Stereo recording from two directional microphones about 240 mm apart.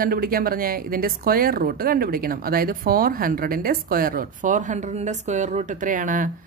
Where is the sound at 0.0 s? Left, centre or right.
Right.